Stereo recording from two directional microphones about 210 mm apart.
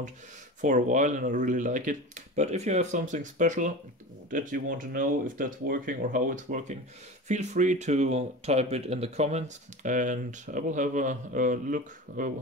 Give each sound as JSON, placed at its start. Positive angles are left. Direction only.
{"t": 0.6, "sound": "speech", "side_deg": -35}